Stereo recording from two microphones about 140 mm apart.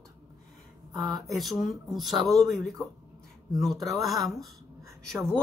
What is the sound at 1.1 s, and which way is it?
Speech, centre (ahead or behind).